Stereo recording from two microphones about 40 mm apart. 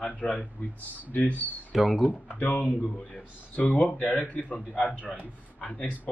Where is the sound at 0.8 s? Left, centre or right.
Left.